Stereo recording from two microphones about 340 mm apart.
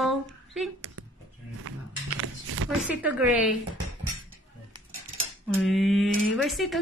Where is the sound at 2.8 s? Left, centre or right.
Centre.